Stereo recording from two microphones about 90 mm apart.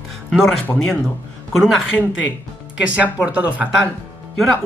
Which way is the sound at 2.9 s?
15° right (ahead or behind).